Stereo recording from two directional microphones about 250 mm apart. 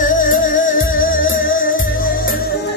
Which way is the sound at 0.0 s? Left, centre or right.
Left.